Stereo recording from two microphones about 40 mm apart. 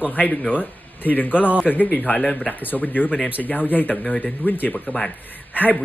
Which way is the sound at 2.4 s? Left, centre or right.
Left.